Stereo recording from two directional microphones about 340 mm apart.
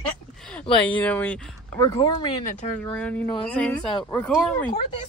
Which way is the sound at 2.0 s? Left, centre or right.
Centre.